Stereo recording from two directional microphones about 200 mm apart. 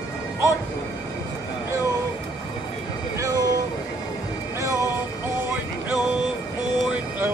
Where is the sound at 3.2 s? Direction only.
15° right (ahead or behind).